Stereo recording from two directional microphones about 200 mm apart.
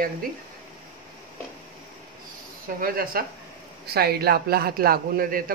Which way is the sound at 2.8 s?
45° right (ahead or behind).